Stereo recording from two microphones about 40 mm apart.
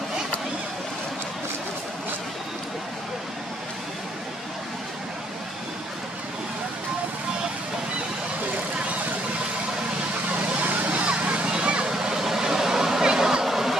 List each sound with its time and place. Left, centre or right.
10.4 s vehicle: right
11.1 s vehicle: right
12.0 s a sound: centre